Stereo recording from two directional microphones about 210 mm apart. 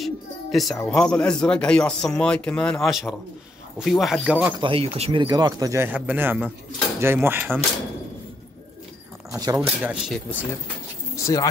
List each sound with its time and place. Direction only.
0.0 s a sound: centre (ahead or behind)
0.7 s a man's voice: 5° left (ahead or behind)
4.6 s speech: 25° right (ahead or behind); by 7.6 s 10° right (ahead or behind)
9.3 s speech: 15° right (ahead or behind)
9.8 s a man's voice: centre (ahead or behind)
11.1 s speech: 15° left (ahead or behind)